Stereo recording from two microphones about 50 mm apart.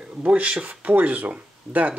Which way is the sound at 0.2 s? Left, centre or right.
Right.